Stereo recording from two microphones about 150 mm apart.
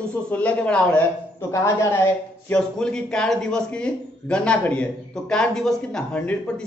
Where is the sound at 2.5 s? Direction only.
5° left (ahead or behind).